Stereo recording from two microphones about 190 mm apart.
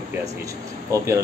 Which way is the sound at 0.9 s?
15° right (ahead or behind).